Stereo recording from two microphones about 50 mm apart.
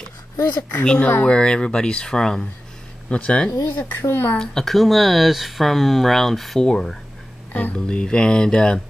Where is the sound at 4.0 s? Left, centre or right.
Left.